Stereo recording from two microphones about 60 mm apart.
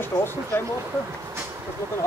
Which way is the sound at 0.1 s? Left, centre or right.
Left.